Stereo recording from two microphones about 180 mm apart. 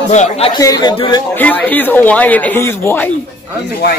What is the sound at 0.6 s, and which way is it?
Speech, 20° left (ahead or behind).